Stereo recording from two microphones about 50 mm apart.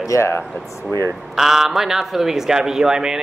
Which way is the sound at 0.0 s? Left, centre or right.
Left.